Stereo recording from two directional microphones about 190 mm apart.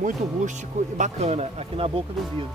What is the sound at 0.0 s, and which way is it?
Speech, 40° right (ahead or behind).